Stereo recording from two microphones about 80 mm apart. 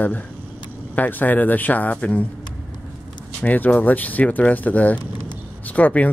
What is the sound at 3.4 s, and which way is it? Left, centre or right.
Speech, left.